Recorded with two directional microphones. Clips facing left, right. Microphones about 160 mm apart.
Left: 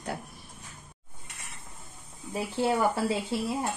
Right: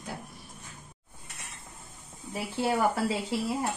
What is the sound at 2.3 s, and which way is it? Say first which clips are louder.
Speech: left 1 dB; 25° left (ahead or behind).